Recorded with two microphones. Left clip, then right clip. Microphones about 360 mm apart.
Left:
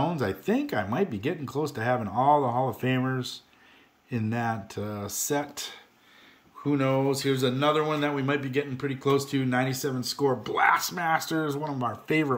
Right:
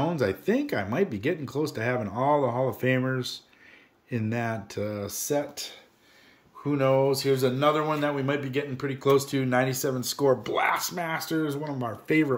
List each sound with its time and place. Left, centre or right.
0.0 s speech: centre